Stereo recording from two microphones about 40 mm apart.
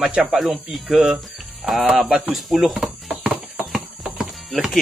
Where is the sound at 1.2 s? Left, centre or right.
Centre.